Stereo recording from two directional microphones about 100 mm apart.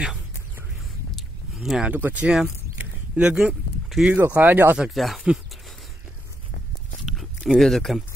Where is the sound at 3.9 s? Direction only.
5° right (ahead or behind).